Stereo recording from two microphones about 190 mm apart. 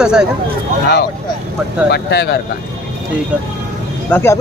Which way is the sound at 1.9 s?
60° left (ahead or behind).